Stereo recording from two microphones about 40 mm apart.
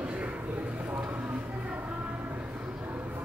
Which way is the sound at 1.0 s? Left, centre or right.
Right.